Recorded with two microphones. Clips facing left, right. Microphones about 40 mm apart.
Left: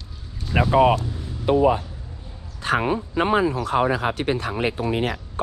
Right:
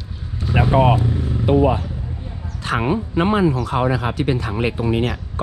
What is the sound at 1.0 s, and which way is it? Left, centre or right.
Speech, right.